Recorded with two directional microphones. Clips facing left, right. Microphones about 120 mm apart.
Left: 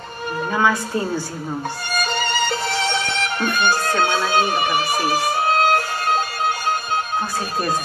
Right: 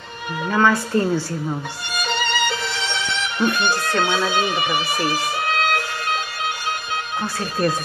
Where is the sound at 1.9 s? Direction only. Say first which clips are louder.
Even; 45° left (ahead or behind).